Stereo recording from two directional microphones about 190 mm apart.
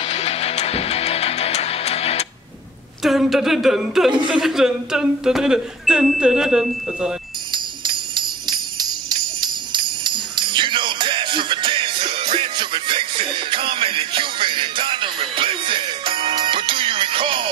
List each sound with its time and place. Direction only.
0.0 s music: 35° left (ahead or behind)
3.0 s music: centre (ahead or behind)
7.5 s jingle bell: 25° right (ahead or behind)